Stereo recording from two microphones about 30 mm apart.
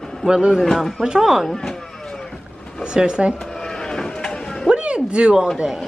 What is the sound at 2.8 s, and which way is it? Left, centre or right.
Speech, right.